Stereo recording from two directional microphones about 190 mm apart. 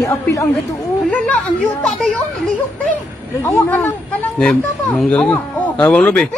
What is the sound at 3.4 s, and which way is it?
Speech, 15° left (ahead or behind).